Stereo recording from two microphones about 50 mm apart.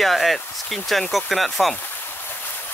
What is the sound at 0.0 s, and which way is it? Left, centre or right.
Speech, centre.